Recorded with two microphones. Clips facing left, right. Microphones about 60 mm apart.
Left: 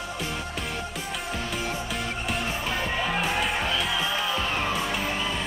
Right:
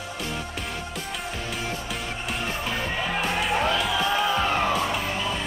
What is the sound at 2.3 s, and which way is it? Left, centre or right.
Music, centre.